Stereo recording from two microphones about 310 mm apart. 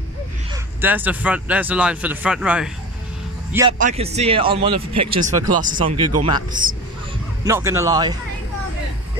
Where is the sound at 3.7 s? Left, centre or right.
Right.